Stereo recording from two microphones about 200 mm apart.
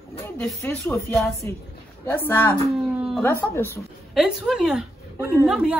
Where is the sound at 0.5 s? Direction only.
15° left (ahead or behind).